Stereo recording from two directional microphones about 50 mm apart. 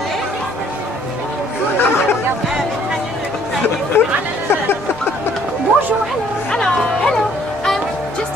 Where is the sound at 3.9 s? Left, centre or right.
Left.